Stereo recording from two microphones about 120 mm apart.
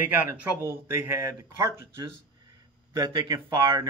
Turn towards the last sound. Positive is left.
turn(degrees=-35)  # may be behind; listen again after turning